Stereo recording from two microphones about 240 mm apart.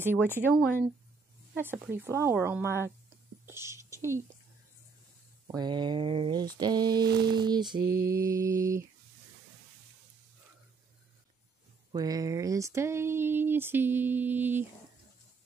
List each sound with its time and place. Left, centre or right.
0.3 s speech: centre
5.5 s speech: centre
7.8 s mantra: right
8.1 s speech: centre
11.9 s speech: centre